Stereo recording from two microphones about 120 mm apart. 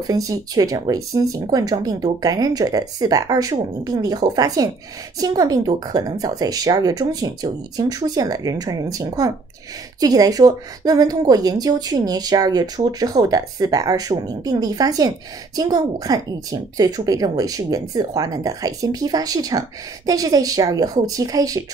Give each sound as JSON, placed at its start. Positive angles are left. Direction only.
{"t": 0.0, "sound": "speech", "side_deg": -30}